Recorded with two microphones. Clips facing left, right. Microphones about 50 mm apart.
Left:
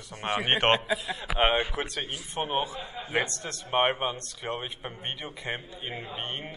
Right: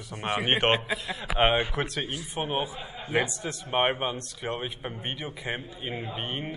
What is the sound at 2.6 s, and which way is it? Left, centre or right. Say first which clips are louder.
Speech: left 1 dB; left.